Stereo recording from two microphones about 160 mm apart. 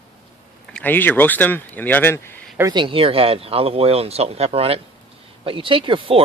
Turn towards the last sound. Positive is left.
turn(degrees=-35)  # may be behind; listen again after turning